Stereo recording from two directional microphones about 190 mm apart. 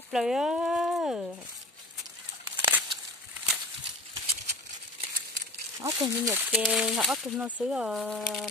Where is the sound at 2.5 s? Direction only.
10° right (ahead or behind).